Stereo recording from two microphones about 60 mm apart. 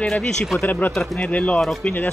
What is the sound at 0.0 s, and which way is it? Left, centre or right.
Speech, centre.